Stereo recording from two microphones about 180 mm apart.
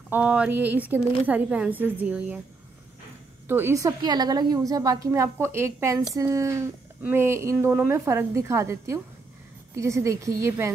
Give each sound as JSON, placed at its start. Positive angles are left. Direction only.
{"t": 0.1, "sound": "a woman's voice", "side_deg": -5}
{"t": 3.4, "sound": "a woman's voice", "side_deg": -10}